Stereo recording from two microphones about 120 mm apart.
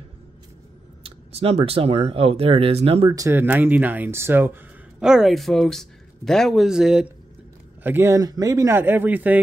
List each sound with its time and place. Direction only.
1.0 s speech: 55° right (ahead or behind)
3.1 s speech: 30° right (ahead or behind)
3.3 s speech: 15° right (ahead or behind)
5.0 s speech: 5° right (ahead or behind)
7.8 s speech: 20° right (ahead or behind)
8.2 s speech: 30° right (ahead or behind); by 9.4 s 15° right (ahead or behind)